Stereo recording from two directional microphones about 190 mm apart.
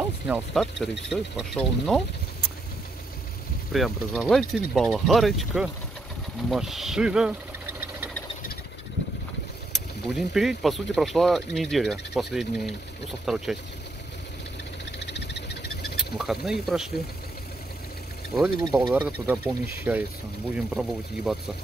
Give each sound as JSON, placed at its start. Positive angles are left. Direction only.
{"t": 0.0, "sound": "speech", "side_deg": -5}
{"t": 3.7, "sound": "speech", "side_deg": 0}
{"t": 6.5, "sound": "a sound", "side_deg": 0}
{"t": 9.7, "sound": "speech", "side_deg": 0}
{"t": 14.9, "sound": "frog", "side_deg": 60}
{"t": 16.2, "sound": "speech", "side_deg": 0}
{"t": 18.6, "sound": "speech", "side_deg": -15}